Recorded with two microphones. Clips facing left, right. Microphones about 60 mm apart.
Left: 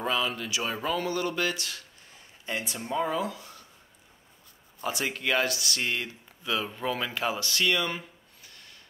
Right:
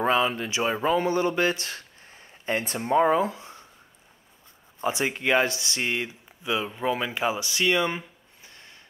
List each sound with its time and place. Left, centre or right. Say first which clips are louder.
0.0 s a sound: right 6 dB; right
4.7 s speech: right 5 dB; right
8.5 s gasp: right 3 dB; right